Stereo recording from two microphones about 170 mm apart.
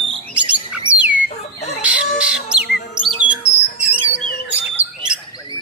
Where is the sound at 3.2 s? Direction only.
10° right (ahead or behind).